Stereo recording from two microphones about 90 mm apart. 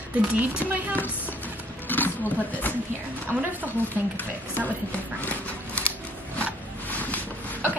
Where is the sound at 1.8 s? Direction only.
20° left (ahead or behind).